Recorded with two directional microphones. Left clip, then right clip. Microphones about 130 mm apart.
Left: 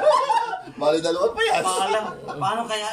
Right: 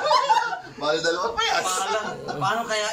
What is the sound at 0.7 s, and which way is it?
A man's voice, 50° left (ahead or behind).